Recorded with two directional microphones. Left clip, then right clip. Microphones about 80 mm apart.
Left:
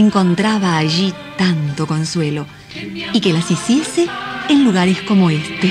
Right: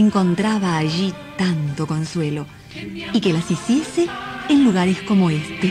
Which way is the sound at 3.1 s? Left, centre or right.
Left.